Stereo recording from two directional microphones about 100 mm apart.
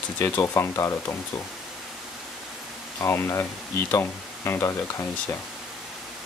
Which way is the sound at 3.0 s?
25° left (ahead or behind).